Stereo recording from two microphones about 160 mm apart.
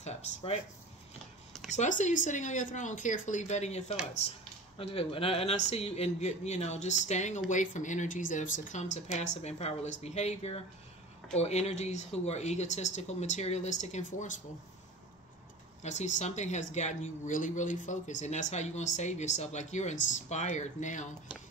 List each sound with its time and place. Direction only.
0.0 s speech: 40° left (ahead or behind)
1.7 s a man's voice: 50° left (ahead or behind)
15.8 s a man's voice: 45° left (ahead or behind)